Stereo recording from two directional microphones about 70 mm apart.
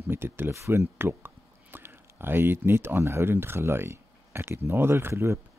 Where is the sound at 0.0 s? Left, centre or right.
Right.